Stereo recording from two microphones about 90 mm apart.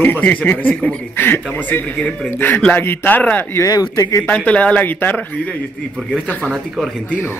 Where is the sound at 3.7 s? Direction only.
40° left (ahead or behind).